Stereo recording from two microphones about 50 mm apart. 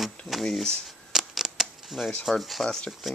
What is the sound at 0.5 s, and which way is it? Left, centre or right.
Speech, centre.